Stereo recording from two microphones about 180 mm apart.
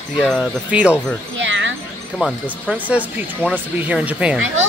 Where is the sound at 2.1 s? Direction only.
Centre (ahead or behind).